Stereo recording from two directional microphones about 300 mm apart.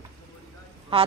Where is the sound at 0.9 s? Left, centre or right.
Centre.